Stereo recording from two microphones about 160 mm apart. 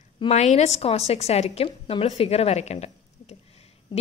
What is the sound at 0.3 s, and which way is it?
A woman's voice, 45° left (ahead or behind).